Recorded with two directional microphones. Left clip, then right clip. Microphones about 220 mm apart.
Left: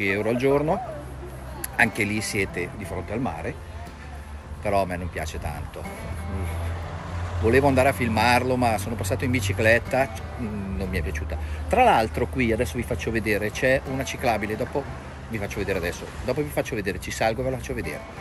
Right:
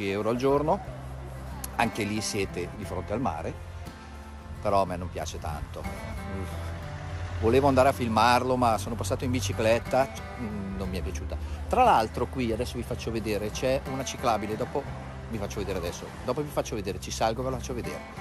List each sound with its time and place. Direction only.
0.0 s speech: 20° right (ahead or behind)
2.0 s speech: 25° right (ahead or behind)
4.6 s speech: 20° right (ahead or behind)
7.5 s speech: 25° right (ahead or behind)
8.7 s speech: 50° right (ahead or behind)
9.1 s speech: 20° right (ahead or behind)